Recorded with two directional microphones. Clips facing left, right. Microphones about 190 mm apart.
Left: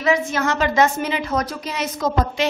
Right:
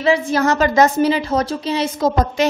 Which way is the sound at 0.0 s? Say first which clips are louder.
Right 4 dB; 30° right (ahead or behind).